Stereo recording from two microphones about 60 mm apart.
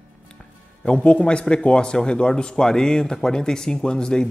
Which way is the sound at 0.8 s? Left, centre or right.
Centre.